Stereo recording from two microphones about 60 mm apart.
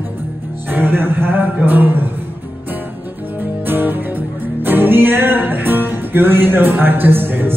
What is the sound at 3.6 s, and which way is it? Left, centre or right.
Music, right.